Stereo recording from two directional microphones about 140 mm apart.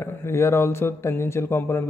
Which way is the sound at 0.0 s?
20° left (ahead or behind).